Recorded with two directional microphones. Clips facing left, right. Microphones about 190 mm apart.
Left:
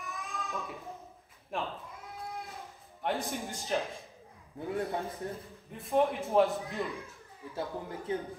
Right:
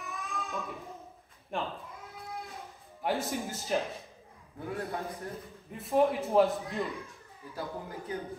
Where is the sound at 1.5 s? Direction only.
Centre (ahead or behind).